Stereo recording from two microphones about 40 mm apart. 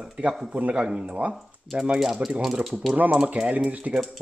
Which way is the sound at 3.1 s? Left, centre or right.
Right.